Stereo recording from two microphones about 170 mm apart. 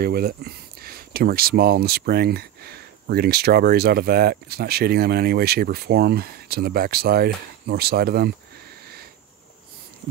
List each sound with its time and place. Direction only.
0.0 s speech: 65° right (ahead or behind)